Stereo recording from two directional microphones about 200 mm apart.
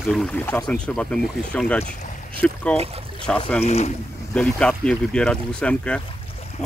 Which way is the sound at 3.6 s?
30° left (ahead or behind).